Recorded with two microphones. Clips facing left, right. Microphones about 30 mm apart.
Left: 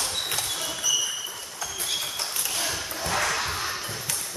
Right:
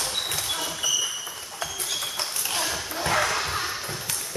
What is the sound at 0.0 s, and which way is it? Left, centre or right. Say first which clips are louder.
Basketball bounce: even; centre.